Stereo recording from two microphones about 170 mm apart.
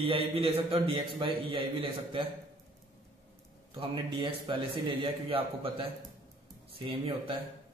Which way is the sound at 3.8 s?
30° right (ahead or behind).